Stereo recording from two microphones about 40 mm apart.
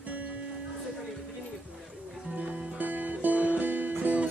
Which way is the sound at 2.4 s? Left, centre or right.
Right.